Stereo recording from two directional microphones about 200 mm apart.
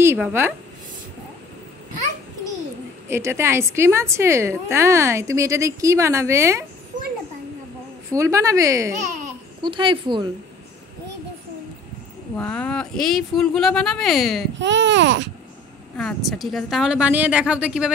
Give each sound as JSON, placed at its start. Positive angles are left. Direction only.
{"t": 0.0, "sound": "a woman's voice", "side_deg": -10}
{"t": 3.1, "sound": "a woman's voice", "side_deg": -15}
{"t": 8.1, "sound": "a woman's voice", "side_deg": -15}
{"t": 12.4, "sound": "speech", "side_deg": 5}
{"t": 14.6, "sound": "speech", "side_deg": -65}
{"t": 16.0, "sound": "speech", "side_deg": 0}